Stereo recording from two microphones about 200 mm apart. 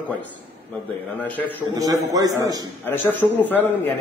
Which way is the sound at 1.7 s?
15° right (ahead or behind).